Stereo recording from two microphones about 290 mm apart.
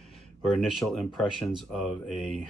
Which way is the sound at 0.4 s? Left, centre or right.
Centre.